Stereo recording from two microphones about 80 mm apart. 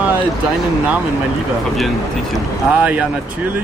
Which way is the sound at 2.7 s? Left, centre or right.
Centre.